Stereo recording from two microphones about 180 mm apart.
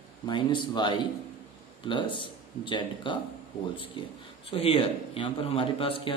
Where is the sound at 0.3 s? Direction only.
25° left (ahead or behind).